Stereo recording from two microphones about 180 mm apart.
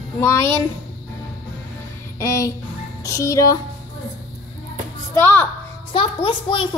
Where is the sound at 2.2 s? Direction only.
15° left (ahead or behind).